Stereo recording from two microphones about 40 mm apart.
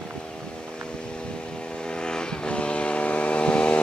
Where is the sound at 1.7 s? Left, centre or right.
Left.